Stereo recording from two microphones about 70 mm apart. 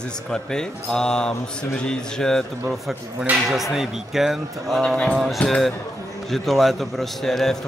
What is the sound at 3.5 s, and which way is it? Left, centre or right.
A man's voice, centre.